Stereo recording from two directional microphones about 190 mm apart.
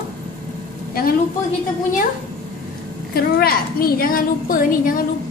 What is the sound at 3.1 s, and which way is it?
A woman's voice, 55° left (ahead or behind).